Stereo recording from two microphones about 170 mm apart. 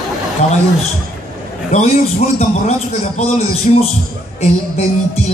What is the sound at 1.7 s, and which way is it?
A man's voice, 40° left (ahead or behind).